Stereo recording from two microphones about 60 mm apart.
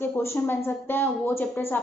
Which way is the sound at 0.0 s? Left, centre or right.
Left.